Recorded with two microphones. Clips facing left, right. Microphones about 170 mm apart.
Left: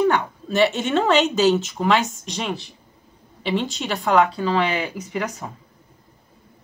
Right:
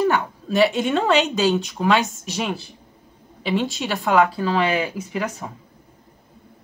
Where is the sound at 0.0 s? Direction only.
Centre (ahead or behind).